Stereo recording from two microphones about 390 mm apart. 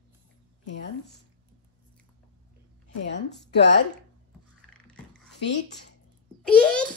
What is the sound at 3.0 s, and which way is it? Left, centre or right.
Speech, left.